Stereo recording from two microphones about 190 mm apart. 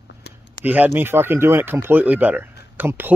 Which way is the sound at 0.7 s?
10° right (ahead or behind).